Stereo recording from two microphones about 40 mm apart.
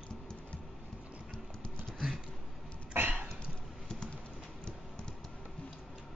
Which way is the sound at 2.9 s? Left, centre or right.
Right.